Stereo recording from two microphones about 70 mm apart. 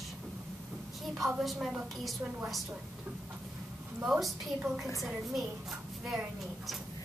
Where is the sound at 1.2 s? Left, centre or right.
Centre.